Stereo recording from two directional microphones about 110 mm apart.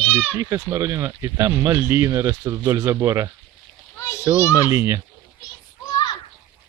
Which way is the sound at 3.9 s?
25° left (ahead or behind).